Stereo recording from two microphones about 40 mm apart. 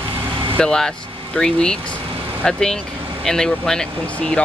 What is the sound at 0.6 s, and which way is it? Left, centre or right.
Speech, centre.